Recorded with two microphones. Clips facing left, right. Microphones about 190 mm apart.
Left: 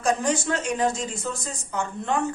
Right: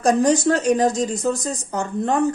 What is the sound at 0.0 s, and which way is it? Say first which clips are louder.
Speech: right 7 dB; 40° right (ahead or behind).